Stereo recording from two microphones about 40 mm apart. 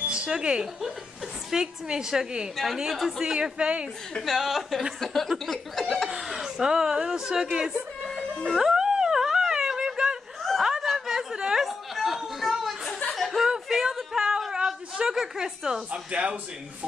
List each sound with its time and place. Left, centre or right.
0.0 s a sound: right
1.5 s a woman's voice: centre
2.5 s a woman's voice: centre
3.3 s speech: right
4.3 s speech: centre
6.0 s speech: centre
8.5 s dog: centre
10.6 s snicker: centre
11.3 s chatter: centre
11.6 s chatter: centre
13.1 s chuckle: centre
13.7 s a sound: centre
15.1 s a woman's voice: centre
15.9 s speech: right